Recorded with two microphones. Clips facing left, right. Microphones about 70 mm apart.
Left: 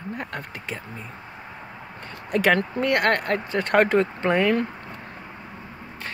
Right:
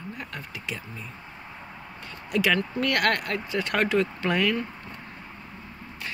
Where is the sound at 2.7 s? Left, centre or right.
Left.